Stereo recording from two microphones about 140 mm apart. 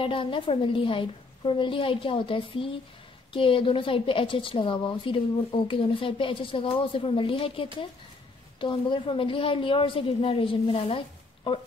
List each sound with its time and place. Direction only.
0.0 s a woman's voice: 40° left (ahead or behind)